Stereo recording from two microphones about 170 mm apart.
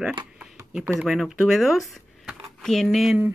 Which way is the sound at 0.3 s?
5° right (ahead or behind).